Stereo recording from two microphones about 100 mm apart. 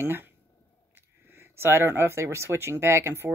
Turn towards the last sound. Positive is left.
turn(degrees=-25)  # may be behind; listen again after turning